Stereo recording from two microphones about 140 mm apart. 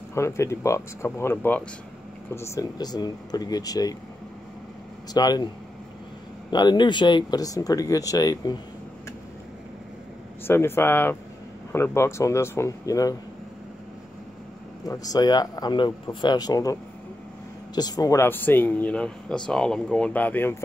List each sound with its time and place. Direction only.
0.1 s speech: 20° left (ahead or behind)
5.1 s speech: 30° left (ahead or behind)
6.5 s speech: 30° left (ahead or behind)
10.4 s speech: 15° left (ahead or behind)
14.9 s speech: 30° left (ahead or behind)
17.7 s speech: 30° left (ahead or behind); by 20.5 s 10° left (ahead or behind)